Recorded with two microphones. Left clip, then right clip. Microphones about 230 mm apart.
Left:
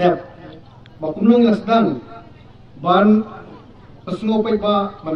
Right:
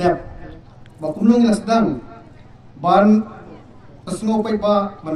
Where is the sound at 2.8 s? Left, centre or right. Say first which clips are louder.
Right 1 dB; right.